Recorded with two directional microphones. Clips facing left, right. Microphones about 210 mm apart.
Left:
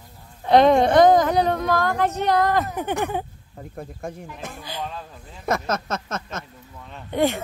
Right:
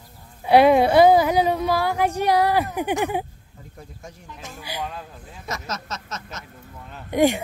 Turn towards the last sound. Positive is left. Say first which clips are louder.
# right 3 dB
turn(degrees=-15)  # may be behind; listen again after turning